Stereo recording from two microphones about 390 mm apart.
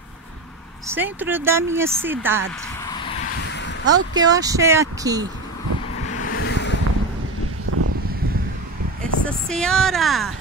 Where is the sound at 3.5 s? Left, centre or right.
Left.